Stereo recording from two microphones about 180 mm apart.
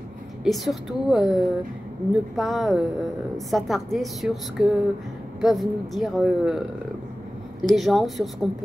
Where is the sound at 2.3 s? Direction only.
Centre (ahead or behind).